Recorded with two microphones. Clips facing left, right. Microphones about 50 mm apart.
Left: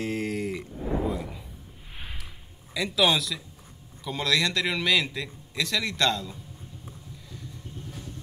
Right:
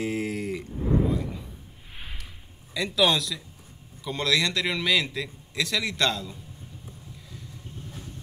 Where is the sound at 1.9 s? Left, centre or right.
Centre.